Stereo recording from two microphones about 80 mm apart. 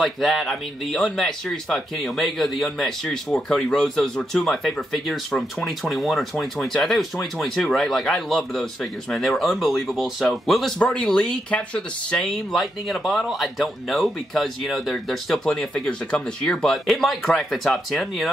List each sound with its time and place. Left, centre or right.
0.0 s speech: centre
10.8 s speech: centre